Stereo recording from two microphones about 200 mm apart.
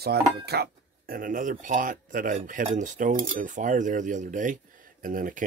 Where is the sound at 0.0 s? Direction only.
55° right (ahead or behind).